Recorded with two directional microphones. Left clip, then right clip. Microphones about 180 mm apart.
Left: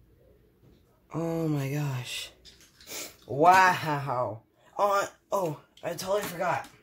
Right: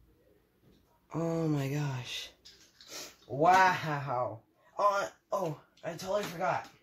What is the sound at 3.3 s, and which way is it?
Speech, 40° left (ahead or behind).